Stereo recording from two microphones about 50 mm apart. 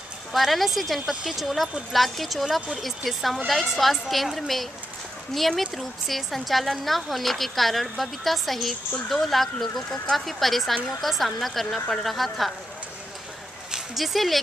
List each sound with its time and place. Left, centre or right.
0.3 s speech: centre
13.9 s speech: centre